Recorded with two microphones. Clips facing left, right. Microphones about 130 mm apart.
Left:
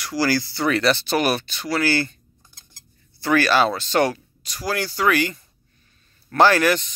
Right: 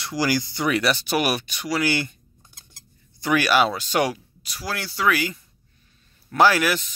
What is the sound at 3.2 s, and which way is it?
Speech, 10° right (ahead or behind).